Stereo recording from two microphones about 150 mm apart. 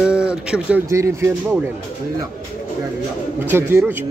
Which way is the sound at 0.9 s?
20° right (ahead or behind).